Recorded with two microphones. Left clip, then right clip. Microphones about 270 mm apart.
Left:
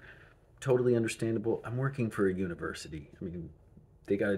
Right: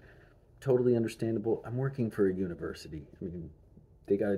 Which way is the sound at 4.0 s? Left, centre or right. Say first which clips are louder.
Right 1 dB; centre.